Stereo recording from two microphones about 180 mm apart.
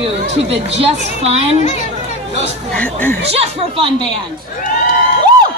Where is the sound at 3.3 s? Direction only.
30° right (ahead or behind).